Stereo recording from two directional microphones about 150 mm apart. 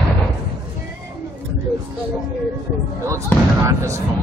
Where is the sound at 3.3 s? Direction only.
15° left (ahead or behind).